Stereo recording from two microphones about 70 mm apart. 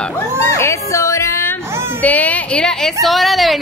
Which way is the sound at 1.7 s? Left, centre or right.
Right.